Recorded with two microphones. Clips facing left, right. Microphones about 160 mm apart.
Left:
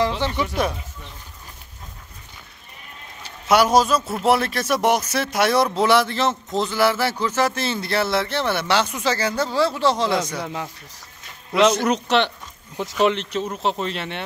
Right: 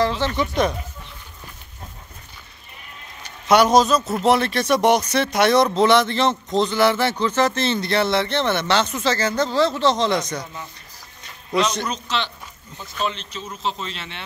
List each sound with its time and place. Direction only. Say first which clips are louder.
0.2 s a man's voice: right 2 dB; 10° left (ahead or behind)
3.4 s a man's voice: right 2 dB; 5° left (ahead or behind)
10.4 s speech: left 6 dB; 80° left
11.8 s speech: left 7 dB; 65° left (ahead or behind)
12.7 s speech: left 7 dB; 75° left (ahead or behind); by 14.2 s 55° left (ahead or behind)